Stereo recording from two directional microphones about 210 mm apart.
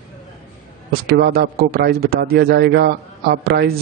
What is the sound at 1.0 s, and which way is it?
Speech, 50° right (ahead or behind).